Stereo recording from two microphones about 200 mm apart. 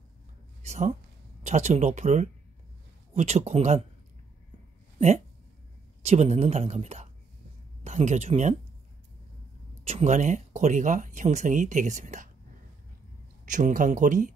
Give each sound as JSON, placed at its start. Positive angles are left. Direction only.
{"t": 0.6, "sound": "speech", "side_deg": -35}
{"t": 6.0, "sound": "speech", "side_deg": -35}
{"t": 9.8, "sound": "speech", "side_deg": -35}
{"t": 13.5, "sound": "speech", "side_deg": -40}